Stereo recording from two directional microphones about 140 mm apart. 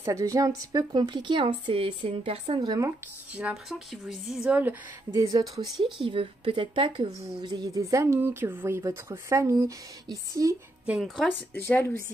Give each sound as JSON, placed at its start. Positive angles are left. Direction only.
{"t": 0.0, "sound": "a woman's voice", "side_deg": -20}
{"t": 2.6, "sound": "a woman's voice", "side_deg": -30}
{"t": 3.3, "sound": "speech", "side_deg": -5}
{"t": 5.1, "sound": "a woman's voice", "side_deg": -25}
{"t": 6.0, "sound": "a woman's voice", "side_deg": -40}
{"t": 7.1, "sound": "a woman's voice", "side_deg": -25}
{"t": 10.9, "sound": "speech", "side_deg": -5}
{"t": 11.5, "sound": "speech", "side_deg": 15}